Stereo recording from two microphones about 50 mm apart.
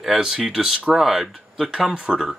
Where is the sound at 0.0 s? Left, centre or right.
Centre.